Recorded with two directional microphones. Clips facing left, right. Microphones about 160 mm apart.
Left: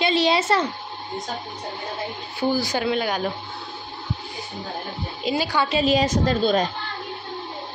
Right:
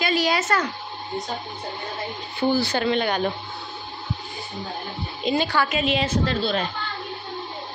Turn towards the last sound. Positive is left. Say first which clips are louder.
# left 3 dB
turn(degrees=40)  # may be behind; listen again after turning